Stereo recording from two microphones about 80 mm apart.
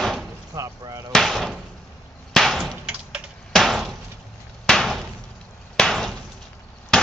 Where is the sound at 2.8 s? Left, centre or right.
Centre.